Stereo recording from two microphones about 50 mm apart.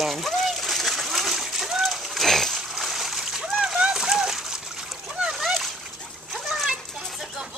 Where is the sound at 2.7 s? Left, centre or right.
Centre.